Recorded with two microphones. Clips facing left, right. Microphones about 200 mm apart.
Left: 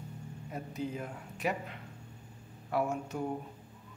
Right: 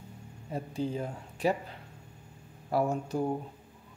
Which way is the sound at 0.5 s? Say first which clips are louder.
Right 5 dB; 30° right (ahead or behind).